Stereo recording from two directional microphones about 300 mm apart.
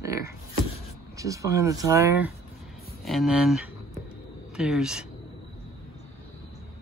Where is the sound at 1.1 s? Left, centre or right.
Centre.